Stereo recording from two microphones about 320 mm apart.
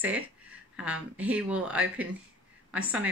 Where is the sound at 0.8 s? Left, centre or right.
Centre.